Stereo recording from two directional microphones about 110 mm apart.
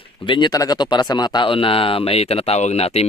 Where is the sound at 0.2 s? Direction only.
50° left (ahead or behind).